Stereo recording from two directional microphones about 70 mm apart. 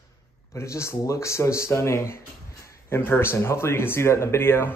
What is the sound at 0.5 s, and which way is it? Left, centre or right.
A man's voice, left.